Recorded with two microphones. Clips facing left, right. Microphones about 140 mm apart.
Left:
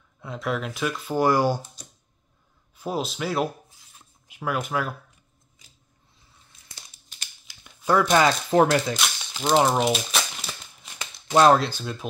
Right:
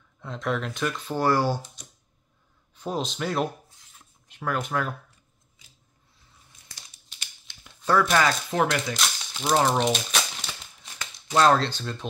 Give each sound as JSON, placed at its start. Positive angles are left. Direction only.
{"t": 0.2, "sound": "speech", "side_deg": 5}
{"t": 2.7, "sound": "speech", "side_deg": 5}
{"t": 7.4, "sound": "a sound", "side_deg": 5}
{"t": 8.1, "sound": "speech", "side_deg": 25}
{"t": 8.9, "sound": "a sound", "side_deg": 5}
{"t": 11.3, "sound": "speech", "side_deg": 15}